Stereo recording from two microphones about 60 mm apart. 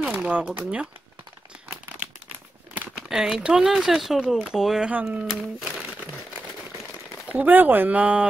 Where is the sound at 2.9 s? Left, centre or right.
Centre.